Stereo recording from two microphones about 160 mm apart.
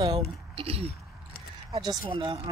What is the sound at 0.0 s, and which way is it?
Speech, 30° right (ahead or behind).